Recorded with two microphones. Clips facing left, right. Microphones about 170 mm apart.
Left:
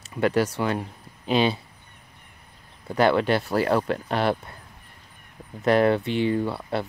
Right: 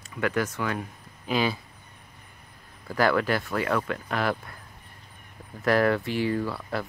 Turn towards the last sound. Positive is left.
turn(degrees=25)  # may be behind; listen again after turning